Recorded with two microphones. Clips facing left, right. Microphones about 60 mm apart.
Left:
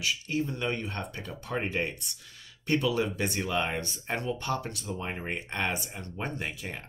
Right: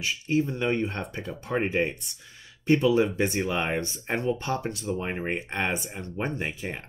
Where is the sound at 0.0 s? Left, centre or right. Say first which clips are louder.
Right 5 dB; right.